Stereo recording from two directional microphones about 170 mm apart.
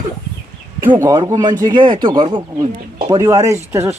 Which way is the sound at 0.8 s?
20° right (ahead or behind).